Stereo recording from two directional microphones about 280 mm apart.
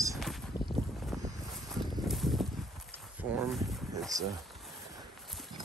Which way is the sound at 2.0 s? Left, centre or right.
Centre.